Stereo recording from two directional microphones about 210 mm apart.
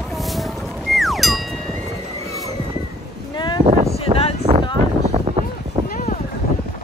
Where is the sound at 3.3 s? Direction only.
20° left (ahead or behind).